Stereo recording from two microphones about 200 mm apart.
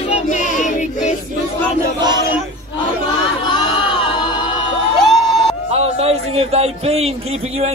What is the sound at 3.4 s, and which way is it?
Music, 25° left (ahead or behind).